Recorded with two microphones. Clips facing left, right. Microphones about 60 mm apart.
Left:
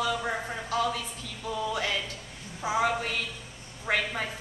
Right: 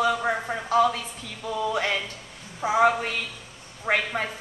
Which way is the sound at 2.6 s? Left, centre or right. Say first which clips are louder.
Right 6 dB; right.